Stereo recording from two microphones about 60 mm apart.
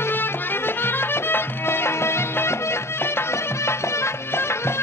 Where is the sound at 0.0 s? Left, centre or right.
Left.